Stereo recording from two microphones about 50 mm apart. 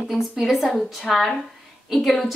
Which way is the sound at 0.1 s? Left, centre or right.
Centre.